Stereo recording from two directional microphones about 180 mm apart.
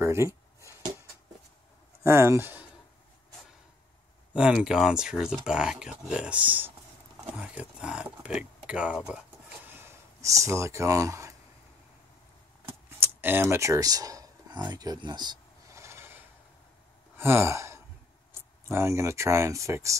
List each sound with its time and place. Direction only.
0.0 s a sound: 15° right (ahead or behind)
2.0 s speech: 15° right (ahead or behind)
4.3 s speech: 5° right (ahead or behind)
12.6 s a sound: 10° right (ahead or behind)
17.2 s sigh: 15° right (ahead or behind)
18.7 s speech: 15° right (ahead or behind)